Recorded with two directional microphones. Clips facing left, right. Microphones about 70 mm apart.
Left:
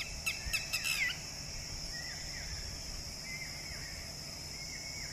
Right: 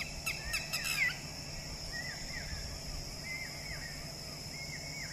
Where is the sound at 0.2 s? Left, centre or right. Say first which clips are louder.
Left 1 dB; right.